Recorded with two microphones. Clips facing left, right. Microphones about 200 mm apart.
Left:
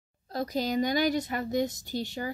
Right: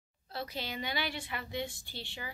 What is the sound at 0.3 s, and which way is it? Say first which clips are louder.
A woman's voice: left 10 dB; 40° left (ahead or behind).